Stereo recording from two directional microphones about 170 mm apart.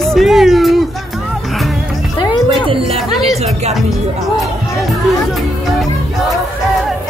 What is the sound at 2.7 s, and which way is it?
Music, 35° right (ahead or behind).